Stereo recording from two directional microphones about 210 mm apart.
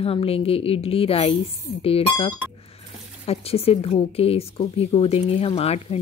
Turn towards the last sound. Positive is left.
turn(degrees=30)  # may be behind; listen again after turning